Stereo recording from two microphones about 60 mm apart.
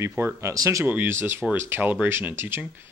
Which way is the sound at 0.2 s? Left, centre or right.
Right.